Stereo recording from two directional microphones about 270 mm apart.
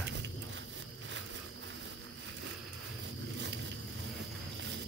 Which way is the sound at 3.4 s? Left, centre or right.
Right.